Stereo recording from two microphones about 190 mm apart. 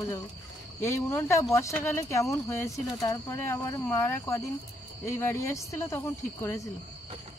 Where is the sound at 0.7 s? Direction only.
15° left (ahead or behind).